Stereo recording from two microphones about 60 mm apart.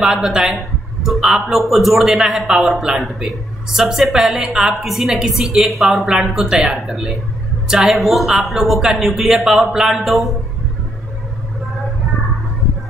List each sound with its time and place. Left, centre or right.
0.0 s a man's voice: centre
6.7 s a man's voice: centre